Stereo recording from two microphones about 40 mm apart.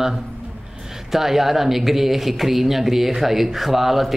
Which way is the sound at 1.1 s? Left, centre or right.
Centre.